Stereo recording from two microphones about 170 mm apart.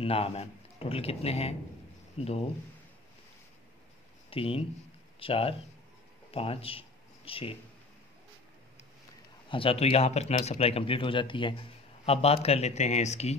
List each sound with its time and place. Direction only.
0.0 s speech: 35° left (ahead or behind)
4.3 s a man's voice: 35° left (ahead or behind)
9.5 s a man's voice: 35° left (ahead or behind)